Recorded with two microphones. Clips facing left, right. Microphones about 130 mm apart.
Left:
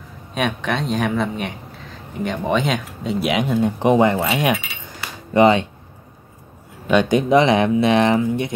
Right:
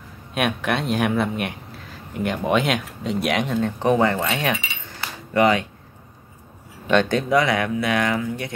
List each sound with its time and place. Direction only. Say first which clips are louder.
0.3 s speech: left 1 dB; 5° right (ahead or behind)
5.3 s speech: left 4 dB; 25° left (ahead or behind)
6.9 s speech: left 3 dB; 10° left (ahead or behind)